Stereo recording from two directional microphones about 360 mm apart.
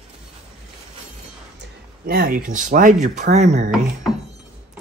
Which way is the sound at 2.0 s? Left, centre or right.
Right.